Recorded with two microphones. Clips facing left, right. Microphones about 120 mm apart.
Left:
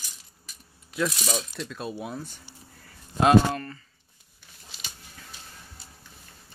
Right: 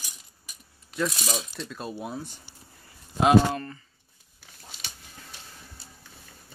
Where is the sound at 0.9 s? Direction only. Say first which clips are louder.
Left 1 dB; centre (ahead or behind).